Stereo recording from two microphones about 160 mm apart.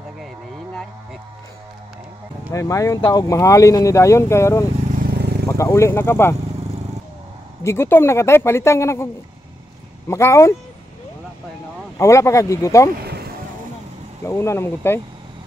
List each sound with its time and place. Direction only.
2.5 s speech: 20° left (ahead or behind)
5.1 s vehicle: 90° right
5.6 s speech: 20° left (ahead or behind)
7.6 s speech: 15° left (ahead or behind)
12.0 s speech: 20° left (ahead or behind)
13.0 s vehicle: 80° right
14.2 s speech: 15° left (ahead or behind)